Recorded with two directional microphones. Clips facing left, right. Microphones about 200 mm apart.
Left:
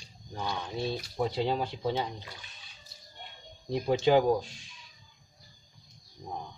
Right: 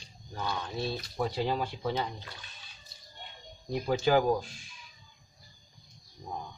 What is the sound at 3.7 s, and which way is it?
Speech, 25° left (ahead or behind).